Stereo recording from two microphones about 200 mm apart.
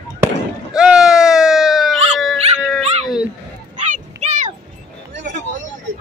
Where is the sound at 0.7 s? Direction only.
5° right (ahead or behind).